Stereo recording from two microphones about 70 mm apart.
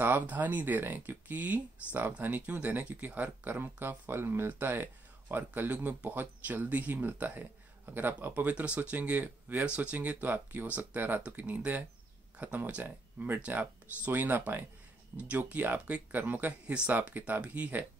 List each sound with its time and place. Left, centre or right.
0.0 s speech: right